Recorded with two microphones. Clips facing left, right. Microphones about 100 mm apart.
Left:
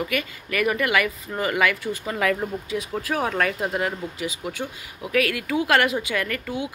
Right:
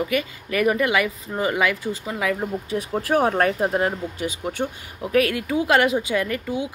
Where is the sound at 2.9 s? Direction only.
30° right (ahead or behind).